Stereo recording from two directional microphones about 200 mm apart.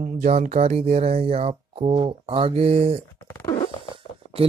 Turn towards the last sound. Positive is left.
turn(degrees=-30)  # may be behind; listen again after turning